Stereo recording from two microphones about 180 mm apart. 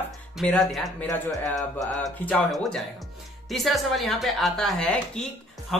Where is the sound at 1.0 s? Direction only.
20° left (ahead or behind).